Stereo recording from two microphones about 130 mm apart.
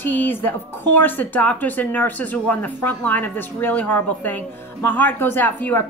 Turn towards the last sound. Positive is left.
turn(degrees=15)  # may be behind; listen again after turning